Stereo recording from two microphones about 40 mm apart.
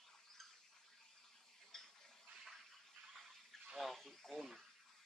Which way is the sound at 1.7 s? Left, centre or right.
Centre.